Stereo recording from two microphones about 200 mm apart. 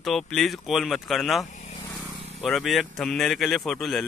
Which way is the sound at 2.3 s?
Centre (ahead or behind).